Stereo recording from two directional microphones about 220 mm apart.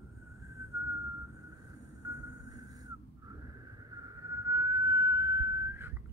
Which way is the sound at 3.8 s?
15° right (ahead or behind).